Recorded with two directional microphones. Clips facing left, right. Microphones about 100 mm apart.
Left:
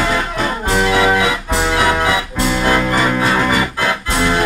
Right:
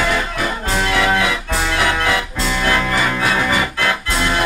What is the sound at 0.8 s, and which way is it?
Music, 15° left (ahead or behind).